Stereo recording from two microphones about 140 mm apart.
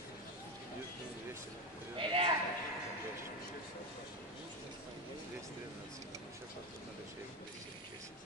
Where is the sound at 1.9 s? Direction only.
40° right (ahead or behind).